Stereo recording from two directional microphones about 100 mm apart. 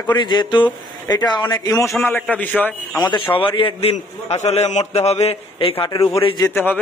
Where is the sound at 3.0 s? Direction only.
55° left (ahead or behind).